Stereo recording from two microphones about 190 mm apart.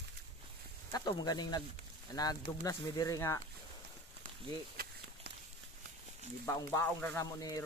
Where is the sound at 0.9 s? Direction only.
20° left (ahead or behind).